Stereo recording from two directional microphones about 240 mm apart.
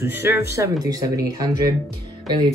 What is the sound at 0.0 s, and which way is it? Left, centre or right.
Speech, centre.